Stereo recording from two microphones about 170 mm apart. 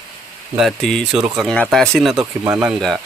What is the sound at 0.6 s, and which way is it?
Speech, centre (ahead or behind).